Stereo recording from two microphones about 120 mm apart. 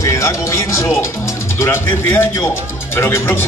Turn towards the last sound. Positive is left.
turn(degrees=20)  # may be behind; listen again after turning